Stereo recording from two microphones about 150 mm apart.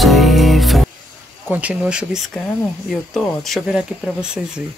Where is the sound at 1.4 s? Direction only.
10° right (ahead or behind).